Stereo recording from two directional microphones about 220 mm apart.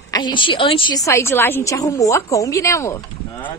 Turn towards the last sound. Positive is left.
turn(degrees=15)  # may be behind; listen again after turning